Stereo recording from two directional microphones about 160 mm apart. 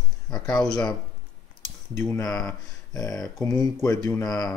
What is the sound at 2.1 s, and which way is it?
Speech, 20° left (ahead or behind).